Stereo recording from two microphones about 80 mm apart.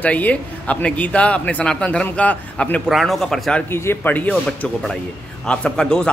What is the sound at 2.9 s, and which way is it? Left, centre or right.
Speech, centre.